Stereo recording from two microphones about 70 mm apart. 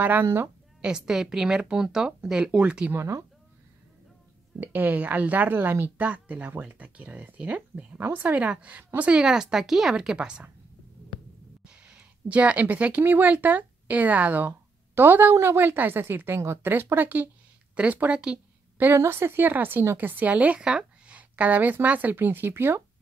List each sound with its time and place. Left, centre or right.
0.0 s speech: right
0.8 s speech: centre
2.9 s speech: right
4.6 s speech: right
5.9 s speech: right
11.6 s a sound: centre
13.0 s a woman's voice: right
18.9 s a woman's voice: right